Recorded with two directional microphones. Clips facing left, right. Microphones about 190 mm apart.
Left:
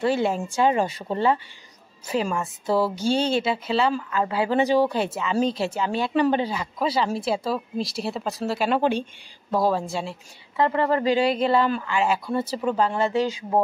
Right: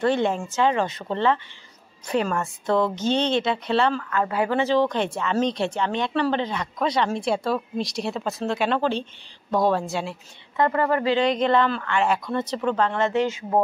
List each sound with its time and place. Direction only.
0.0 s speech: 5° left (ahead or behind)
4.0 s speech: 15° left (ahead or behind); by 10.1 s centre (ahead or behind)
10.6 s speech: 25° left (ahead or behind)
11.1 s speech: 5° left (ahead or behind)
13.1 s speech: 35° left (ahead or behind)